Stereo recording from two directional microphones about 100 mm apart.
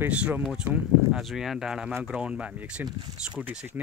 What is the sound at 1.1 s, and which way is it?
Speech, centre (ahead or behind).